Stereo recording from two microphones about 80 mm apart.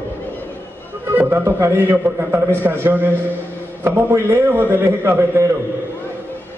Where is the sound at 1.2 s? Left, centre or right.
Right.